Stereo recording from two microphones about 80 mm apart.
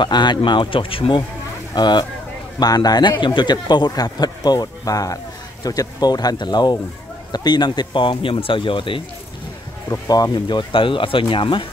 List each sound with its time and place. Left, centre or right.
0.0 s speech: left
1.8 s a man's voice: left
9.8 s speech: left